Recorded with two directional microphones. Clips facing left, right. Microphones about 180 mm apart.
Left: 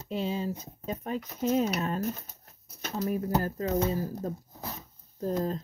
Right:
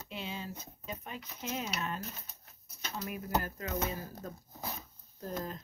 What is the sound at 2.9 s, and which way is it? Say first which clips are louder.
Speech: left 7 dB; 35° left (ahead or behind).